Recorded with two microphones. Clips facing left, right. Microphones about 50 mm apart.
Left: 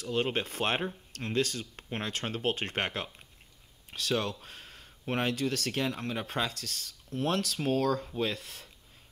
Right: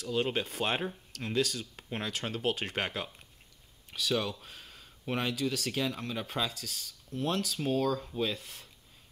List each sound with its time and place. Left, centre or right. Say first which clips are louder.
0.0 s speech: left 1 dB; left
8.2 s speech: left 1 dB; left